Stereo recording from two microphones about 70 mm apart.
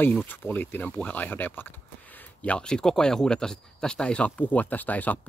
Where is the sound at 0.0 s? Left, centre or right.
Left.